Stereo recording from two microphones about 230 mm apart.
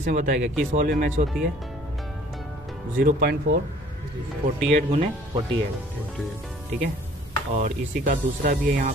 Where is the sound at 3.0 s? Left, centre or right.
Right.